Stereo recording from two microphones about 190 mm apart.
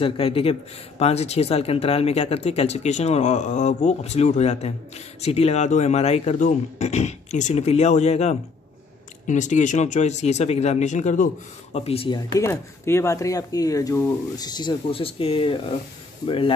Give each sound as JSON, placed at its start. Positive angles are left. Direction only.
{"t": 0.0, "sound": "speech", "side_deg": 30}